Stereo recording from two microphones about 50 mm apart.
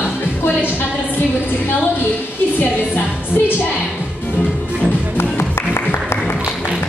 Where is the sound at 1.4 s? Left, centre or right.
Left.